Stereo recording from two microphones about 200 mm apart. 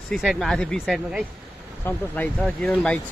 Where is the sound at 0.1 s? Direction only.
Centre (ahead or behind).